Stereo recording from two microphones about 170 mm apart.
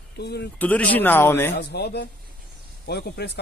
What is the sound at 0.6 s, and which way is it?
Speech, 10° left (ahead or behind).